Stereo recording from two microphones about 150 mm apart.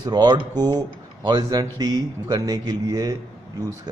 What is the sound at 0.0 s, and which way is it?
Speech, 30° right (ahead or behind).